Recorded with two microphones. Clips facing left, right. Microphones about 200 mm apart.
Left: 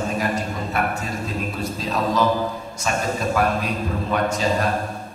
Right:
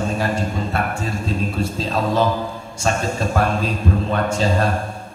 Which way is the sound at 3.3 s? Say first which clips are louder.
Right 2 dB; 30° right (ahead or behind).